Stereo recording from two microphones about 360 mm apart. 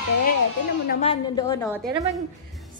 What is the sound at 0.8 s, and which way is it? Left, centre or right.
Speech, centre.